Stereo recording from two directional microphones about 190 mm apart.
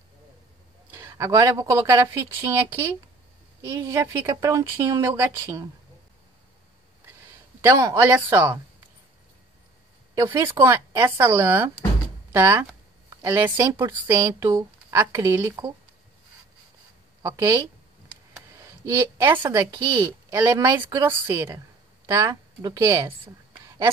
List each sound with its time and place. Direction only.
0.9 s speech: 15° right (ahead or behind)
7.6 s speech: 15° right (ahead or behind)
10.1 s speech: 15° right (ahead or behind)
17.2 s a woman's voice: 20° right (ahead or behind)